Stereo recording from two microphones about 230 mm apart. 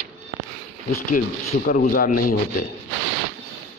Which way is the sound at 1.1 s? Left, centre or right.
Left.